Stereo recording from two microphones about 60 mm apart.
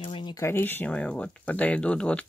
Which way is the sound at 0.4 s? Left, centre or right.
Left.